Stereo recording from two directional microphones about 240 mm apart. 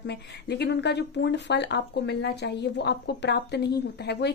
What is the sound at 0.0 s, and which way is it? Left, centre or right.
Speech, left.